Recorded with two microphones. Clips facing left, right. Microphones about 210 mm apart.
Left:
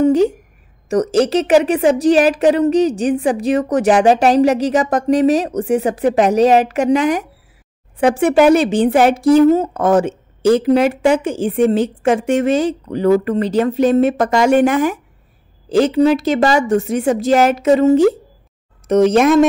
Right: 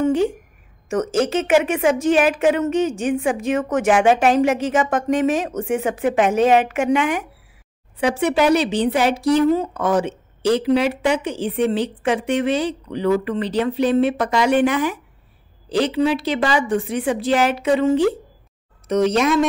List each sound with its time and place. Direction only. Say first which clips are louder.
0.0 s a sound: left 5 dB; 40° left (ahead or behind)
0.8 s a woman's voice: left 5 dB; 35° left (ahead or behind)
8.0 s speech: left 6 dB; 50° left (ahead or behind)